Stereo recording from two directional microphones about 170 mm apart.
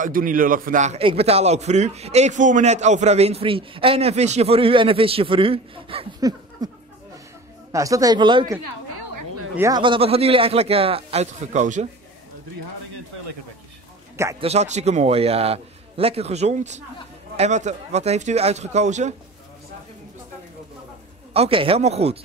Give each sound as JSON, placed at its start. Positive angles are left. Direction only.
{"t": 0.0, "sound": "a man's voice", "side_deg": -55}
{"t": 0.9, "sound": "a man's voice", "side_deg": -35}
{"t": 6.6, "sound": "speech", "side_deg": -20}
{"t": 9.6, "sound": "a man's voice", "side_deg": -25}
{"t": 14.4, "sound": "a man's voice", "side_deg": -40}
{"t": 21.3, "sound": "a man's voice", "side_deg": -35}